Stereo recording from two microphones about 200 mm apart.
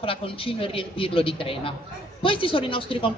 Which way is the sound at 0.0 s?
25° left (ahead or behind).